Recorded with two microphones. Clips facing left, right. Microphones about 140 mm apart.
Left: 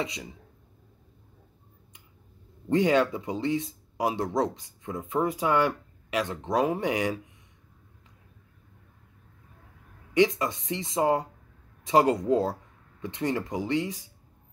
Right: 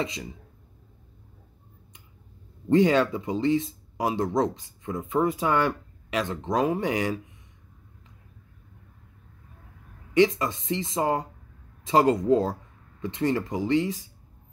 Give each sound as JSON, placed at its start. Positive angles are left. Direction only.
{"t": 0.0, "sound": "speech", "side_deg": 10}
{"t": 2.7, "sound": "speech", "side_deg": 10}
{"t": 6.0, "sound": "a sound", "side_deg": 10}
{"t": 6.3, "sound": "speech", "side_deg": 10}
{"t": 10.1, "sound": "speech", "side_deg": 15}